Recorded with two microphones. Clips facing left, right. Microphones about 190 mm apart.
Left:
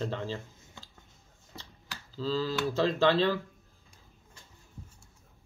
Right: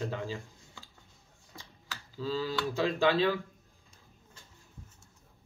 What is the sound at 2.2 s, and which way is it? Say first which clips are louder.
Speech: left 2 dB; 15° right (ahead or behind).